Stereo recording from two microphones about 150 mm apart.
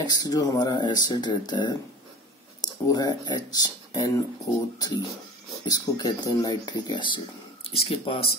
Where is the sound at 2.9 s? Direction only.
25° left (ahead or behind).